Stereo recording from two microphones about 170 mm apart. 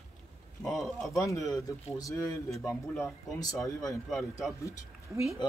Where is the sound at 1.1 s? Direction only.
20° left (ahead or behind).